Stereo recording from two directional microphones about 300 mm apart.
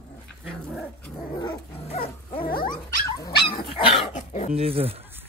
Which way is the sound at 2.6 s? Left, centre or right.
Centre.